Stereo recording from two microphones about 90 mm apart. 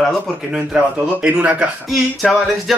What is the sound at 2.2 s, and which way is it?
Speech, centre (ahead or behind).